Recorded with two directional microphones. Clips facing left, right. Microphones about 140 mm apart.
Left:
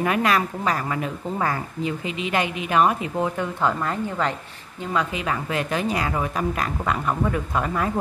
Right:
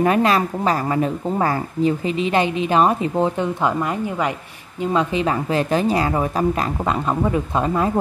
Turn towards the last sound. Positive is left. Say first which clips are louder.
# right 5 dB
turn(degrees=-25)  # may be behind; listen again after turning